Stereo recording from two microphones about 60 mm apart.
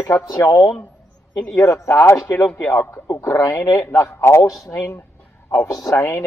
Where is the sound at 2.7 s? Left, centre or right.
Left.